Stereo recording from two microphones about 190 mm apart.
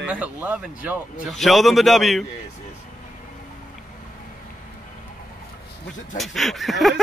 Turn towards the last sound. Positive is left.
turn(degrees=0)  # may be behind; listen again after turning